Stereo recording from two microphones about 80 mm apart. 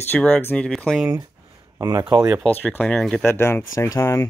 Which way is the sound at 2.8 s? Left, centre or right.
Centre.